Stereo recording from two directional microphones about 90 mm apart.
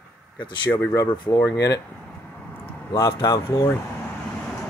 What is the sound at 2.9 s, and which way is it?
Speech, 40° left (ahead or behind).